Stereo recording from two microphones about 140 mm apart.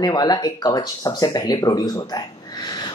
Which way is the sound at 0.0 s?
30° left (ahead or behind).